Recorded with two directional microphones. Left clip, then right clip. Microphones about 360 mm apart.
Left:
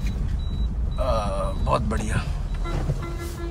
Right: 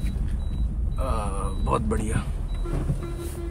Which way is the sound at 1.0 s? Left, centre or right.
Centre.